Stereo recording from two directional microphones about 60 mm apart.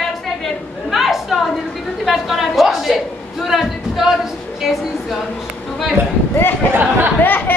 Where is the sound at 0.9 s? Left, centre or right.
Centre.